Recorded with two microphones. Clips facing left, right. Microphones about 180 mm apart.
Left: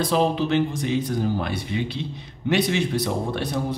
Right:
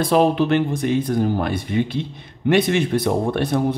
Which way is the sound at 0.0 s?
60° right (ahead or behind).